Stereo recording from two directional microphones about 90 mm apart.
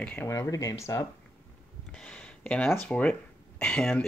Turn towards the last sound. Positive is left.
turn(degrees=5)  # may be behind; listen again after turning